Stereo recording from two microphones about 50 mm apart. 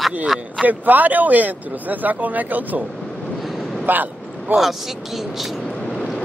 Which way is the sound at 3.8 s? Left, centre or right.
Right.